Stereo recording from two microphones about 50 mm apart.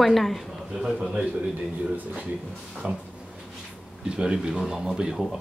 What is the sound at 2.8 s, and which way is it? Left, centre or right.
Speech, right.